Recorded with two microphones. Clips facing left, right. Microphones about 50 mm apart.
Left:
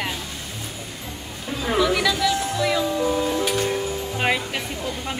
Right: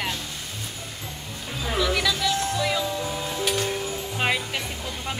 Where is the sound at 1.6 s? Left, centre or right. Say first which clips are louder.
Left 4 dB; centre.